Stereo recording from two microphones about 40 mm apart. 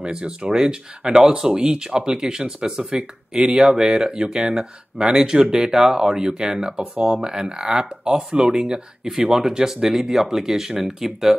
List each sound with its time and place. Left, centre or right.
0.0 s speech: right